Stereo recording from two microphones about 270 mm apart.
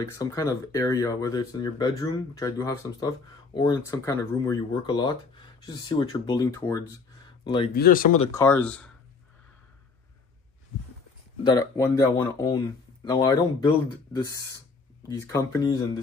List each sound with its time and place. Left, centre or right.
0.1 s speech: centre
7.7 s speech: left
8.3 s speech: centre
11.4 s speech: centre